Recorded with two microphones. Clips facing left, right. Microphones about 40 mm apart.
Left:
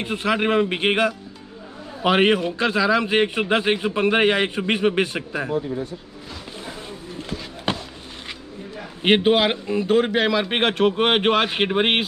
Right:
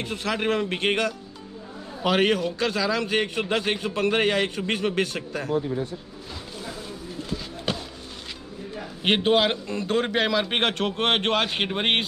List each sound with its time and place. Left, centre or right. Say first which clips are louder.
0.0 s a man's voice: left 5 dB; centre
7.7 s a sound: left 4 dB; left
9.0 s a man's voice: left 4 dB; centre